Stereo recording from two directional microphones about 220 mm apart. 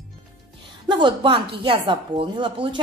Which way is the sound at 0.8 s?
20° right (ahead or behind).